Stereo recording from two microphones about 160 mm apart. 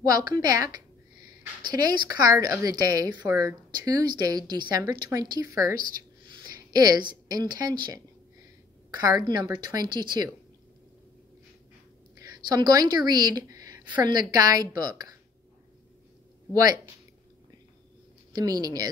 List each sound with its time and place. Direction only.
0.0 s a woman's voice: 25° right (ahead or behind)
9.3 s speech: 25° right (ahead or behind)
12.4 s a woman's voice: 25° right (ahead or behind)
18.3 s speech: 25° right (ahead or behind)